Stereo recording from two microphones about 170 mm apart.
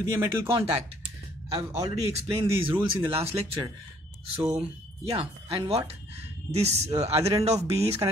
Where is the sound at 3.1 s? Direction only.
35° right (ahead or behind).